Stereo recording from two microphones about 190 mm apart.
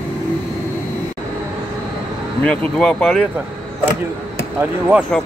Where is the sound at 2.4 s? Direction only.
5° left (ahead or behind).